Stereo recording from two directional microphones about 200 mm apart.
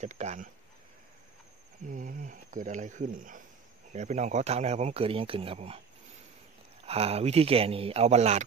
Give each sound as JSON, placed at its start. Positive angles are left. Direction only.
{"t": 0.0, "sound": "speech", "side_deg": -35}
{"t": 1.9, "sound": "speech", "side_deg": -45}
{"t": 6.9, "sound": "speech", "side_deg": -30}